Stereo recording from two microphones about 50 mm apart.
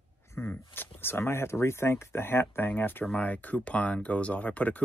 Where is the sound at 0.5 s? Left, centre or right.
Left.